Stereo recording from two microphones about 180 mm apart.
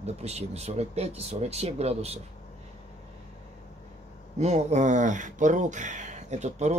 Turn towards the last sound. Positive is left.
turn(degrees=-40)  # may be behind; listen again after turning